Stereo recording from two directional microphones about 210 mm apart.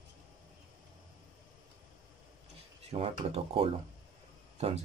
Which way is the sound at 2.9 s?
30° right (ahead or behind).